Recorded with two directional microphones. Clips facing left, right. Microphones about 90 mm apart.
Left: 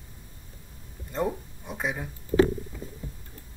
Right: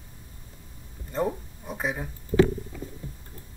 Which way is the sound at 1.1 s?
Centre (ahead or behind).